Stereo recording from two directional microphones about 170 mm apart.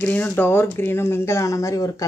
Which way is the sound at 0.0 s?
10° left (ahead or behind).